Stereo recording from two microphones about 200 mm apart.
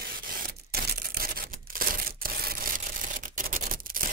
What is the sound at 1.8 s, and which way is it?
Camera, 45° right (ahead or behind).